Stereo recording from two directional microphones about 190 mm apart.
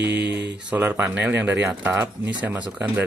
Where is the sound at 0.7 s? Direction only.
10° right (ahead or behind).